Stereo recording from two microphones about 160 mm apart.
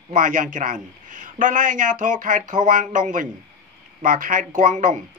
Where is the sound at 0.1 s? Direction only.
55° right (ahead or behind).